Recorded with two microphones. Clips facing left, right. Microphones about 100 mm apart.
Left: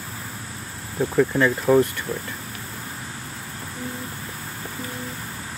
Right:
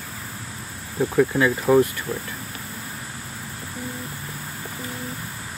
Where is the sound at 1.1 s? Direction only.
5° right (ahead or behind).